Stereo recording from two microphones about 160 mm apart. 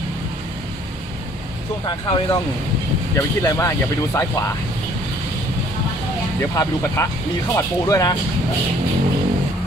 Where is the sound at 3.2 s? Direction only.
20° left (ahead or behind).